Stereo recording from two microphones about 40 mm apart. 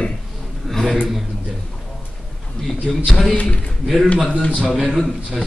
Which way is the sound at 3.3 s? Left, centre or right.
Left.